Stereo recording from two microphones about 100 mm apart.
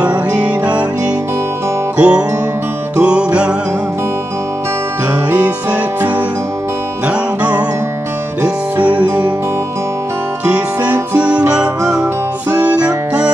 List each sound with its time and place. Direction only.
2.0 s music: 10° right (ahead or behind)
5.7 s music: 20° right (ahead or behind)
10.4 s music: 15° right (ahead or behind)